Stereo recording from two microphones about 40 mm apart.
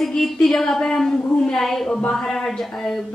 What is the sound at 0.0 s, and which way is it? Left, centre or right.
A woman's voice, centre.